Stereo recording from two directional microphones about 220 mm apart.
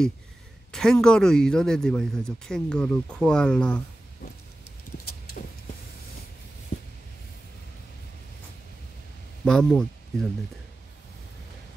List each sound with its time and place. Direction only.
0.7 s speech: centre (ahead or behind)
5.4 s power windows: 35° left (ahead or behind)
9.4 s speech: 5° left (ahead or behind)